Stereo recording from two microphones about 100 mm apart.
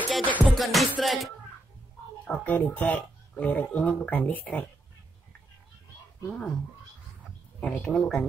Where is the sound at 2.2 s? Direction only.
15° left (ahead or behind).